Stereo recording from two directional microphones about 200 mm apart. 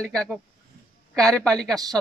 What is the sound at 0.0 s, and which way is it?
A man's voice, 5° left (ahead or behind).